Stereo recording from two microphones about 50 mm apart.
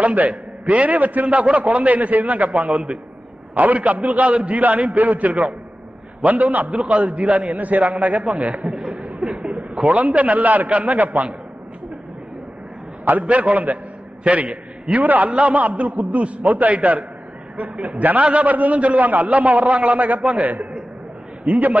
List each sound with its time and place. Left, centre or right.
0.0 s a man's voice: right
8.9 s a sound: right
9.8 s a man's voice: right
13.2 s a man's voice: right